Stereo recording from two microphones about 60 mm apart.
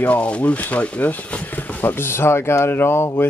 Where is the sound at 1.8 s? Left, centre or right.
Left.